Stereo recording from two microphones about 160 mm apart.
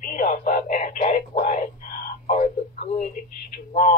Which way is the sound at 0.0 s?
55° left (ahead or behind).